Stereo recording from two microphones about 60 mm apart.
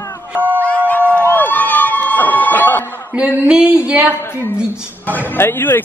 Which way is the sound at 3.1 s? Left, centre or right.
Centre.